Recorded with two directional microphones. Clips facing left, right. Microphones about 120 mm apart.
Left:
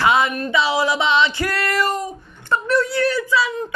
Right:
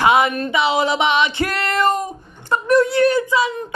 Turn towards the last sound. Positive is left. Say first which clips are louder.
# right 3 dB
turn(degrees=-20)  # may be behind; listen again after turning